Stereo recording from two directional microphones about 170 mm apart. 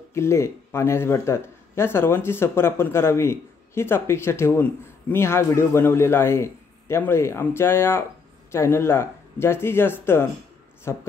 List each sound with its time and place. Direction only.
0.1 s speech: 15° left (ahead or behind)